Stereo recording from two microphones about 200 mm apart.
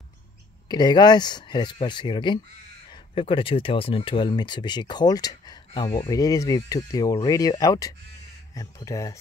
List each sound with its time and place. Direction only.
0.7 s speech: 20° left (ahead or behind)